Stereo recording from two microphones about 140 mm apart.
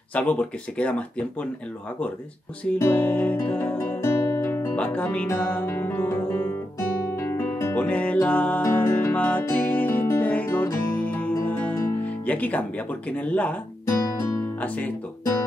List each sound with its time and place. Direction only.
0.1 s speech: 10° left (ahead or behind)
2.8 s music: 15° left (ahead or behind)
13.2 s speech: 10° left (ahead or behind)
14.2 s guitar: 15° left (ahead or behind)